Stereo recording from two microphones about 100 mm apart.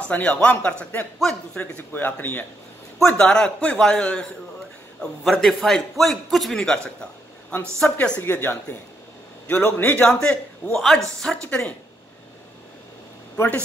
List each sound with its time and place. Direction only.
0.0 s a man's voice: 15° left (ahead or behind)
3.0 s a man's voice: 5° left (ahead or behind)
10.0 s a man's voice: 5° left (ahead or behind)